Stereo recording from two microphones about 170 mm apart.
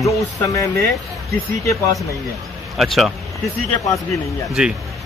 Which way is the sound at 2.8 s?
Centre (ahead or behind).